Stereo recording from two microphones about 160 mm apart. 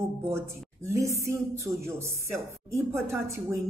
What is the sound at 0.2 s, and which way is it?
Speech, 15° right (ahead or behind).